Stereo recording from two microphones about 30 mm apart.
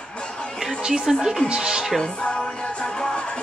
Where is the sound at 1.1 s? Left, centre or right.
Centre.